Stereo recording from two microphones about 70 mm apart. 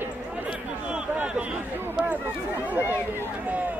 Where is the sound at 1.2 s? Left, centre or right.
Centre.